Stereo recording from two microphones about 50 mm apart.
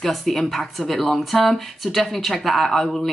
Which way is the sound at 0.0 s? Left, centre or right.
Centre.